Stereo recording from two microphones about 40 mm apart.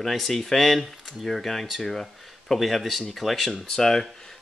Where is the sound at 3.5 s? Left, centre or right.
Centre.